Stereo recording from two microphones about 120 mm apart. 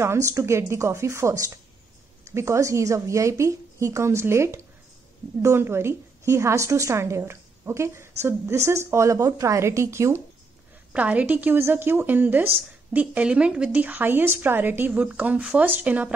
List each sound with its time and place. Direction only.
0.0 s a woman's voice: 25° right (ahead or behind)
10.9 s a woman's voice: 10° right (ahead or behind)